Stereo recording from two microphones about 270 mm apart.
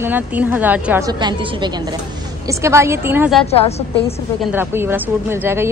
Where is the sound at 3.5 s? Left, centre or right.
Left.